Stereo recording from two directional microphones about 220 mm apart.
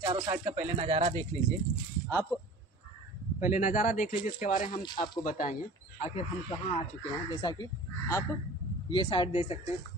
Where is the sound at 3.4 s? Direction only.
35° left (ahead or behind).